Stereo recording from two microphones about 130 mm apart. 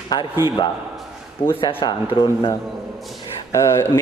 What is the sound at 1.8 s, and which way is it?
Mantra, 35° left (ahead or behind).